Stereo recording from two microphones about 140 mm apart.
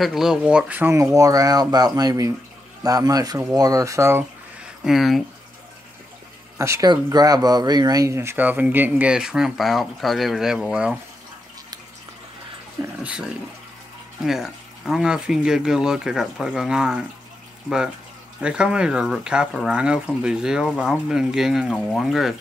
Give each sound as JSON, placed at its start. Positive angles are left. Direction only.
{"t": 0.0, "sound": "speech", "side_deg": 0}
{"t": 4.8, "sound": "speech", "side_deg": 0}
{"t": 6.6, "sound": "speech", "side_deg": -20}
{"t": 13.0, "sound": "speech", "side_deg": -5}
{"t": 18.4, "sound": "speech", "side_deg": -5}